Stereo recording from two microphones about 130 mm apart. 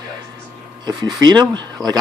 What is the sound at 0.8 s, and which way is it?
Speech, 35° right (ahead or behind).